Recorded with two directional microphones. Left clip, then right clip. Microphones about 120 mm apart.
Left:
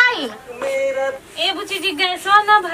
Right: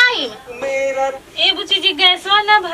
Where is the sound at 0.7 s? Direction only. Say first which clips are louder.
Right 2 dB; 15° left (ahead or behind).